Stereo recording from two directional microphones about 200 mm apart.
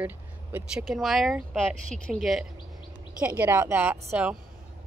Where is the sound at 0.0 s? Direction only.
10° right (ahead or behind).